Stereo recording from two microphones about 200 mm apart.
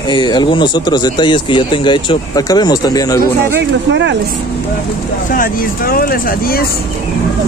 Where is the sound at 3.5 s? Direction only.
60° right (ahead or behind).